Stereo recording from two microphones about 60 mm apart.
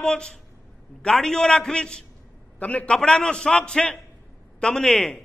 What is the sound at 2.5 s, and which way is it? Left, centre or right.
A man's voice, left.